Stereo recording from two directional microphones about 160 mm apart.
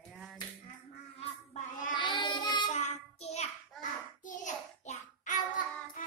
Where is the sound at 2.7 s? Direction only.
45° left (ahead or behind).